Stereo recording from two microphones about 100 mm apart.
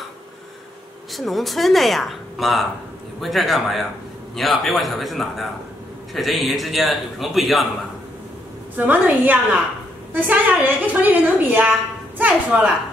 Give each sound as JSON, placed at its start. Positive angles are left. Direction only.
{"t": 1.1, "sound": "speech", "side_deg": 0}
{"t": 8.7, "sound": "a woman's voice", "side_deg": -15}